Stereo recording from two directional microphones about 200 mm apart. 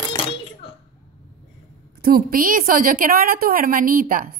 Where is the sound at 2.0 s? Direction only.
50° right (ahead or behind).